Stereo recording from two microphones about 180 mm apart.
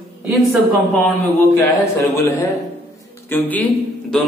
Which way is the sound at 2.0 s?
15° left (ahead or behind).